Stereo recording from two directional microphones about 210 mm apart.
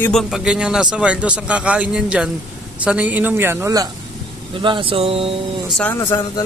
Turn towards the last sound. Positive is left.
turn(degrees=15)  # may be behind; listen again after turning